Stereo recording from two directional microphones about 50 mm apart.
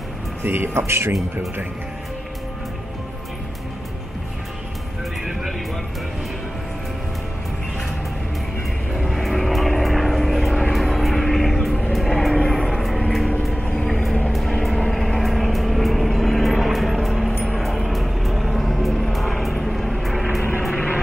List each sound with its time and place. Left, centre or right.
0.4 s speech: right
0.7 s speech: right
5.2 s music: centre
8.9 s vehicle: centre